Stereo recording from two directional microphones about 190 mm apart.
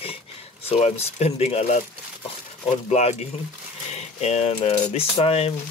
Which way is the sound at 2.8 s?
35° left (ahead or behind).